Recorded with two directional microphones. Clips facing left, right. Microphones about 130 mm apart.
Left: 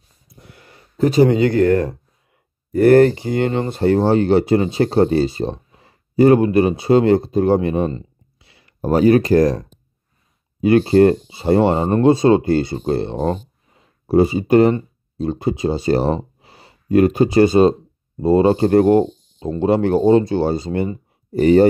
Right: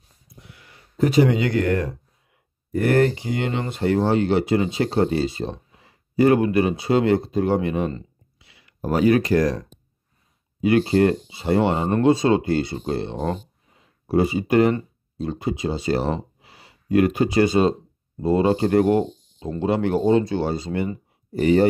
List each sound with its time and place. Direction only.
0.5 s speech: 45° left (ahead or behind)